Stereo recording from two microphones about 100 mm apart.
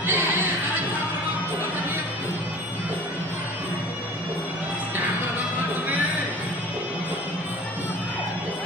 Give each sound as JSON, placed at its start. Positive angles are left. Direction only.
{"t": 0.0, "sound": "music", "side_deg": -20}